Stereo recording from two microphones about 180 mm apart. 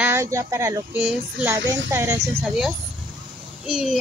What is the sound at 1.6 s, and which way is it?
Speech, 90° right.